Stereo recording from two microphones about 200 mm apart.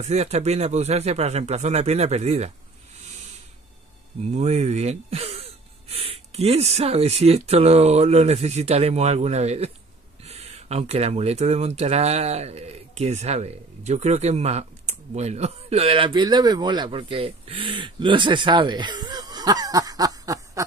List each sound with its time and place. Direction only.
0.0 s speech: 35° right (ahead or behind)
4.2 s speech: 35° right (ahead or behind); by 20.6 s 15° right (ahead or behind)